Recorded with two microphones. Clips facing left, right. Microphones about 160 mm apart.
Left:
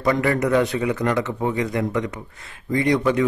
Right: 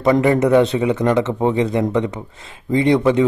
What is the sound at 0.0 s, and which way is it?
A man's voice, 20° right (ahead or behind).